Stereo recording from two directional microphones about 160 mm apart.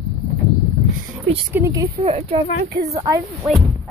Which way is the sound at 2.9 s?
20° right (ahead or behind).